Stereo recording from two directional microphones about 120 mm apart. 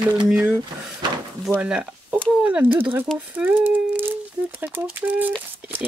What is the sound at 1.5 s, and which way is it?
Speech, 5° right (ahead or behind).